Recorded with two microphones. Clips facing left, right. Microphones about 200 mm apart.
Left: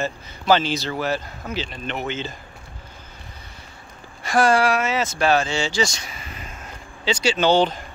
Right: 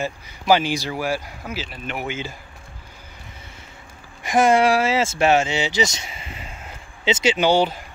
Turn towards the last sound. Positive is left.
turn(degrees=-10)  # may be behind; listen again after turning